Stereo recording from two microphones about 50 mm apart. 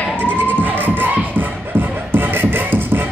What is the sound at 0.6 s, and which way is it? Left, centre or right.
Beatboxing, right.